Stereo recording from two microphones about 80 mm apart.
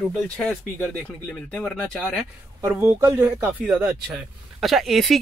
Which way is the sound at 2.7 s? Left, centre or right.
Right.